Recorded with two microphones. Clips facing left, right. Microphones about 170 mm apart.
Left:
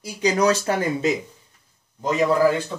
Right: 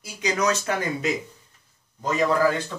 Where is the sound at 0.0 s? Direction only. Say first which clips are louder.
Left 5 dB; 30° left (ahead or behind).